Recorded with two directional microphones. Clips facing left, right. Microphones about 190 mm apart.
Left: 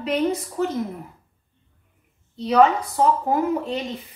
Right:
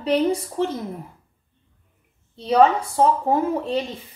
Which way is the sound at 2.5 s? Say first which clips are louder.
Right 1 dB; 30° right (ahead or behind).